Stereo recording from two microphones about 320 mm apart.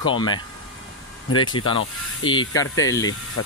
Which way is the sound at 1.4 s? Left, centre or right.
Centre.